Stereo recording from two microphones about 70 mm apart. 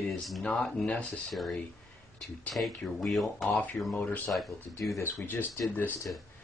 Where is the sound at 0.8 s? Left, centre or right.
Centre.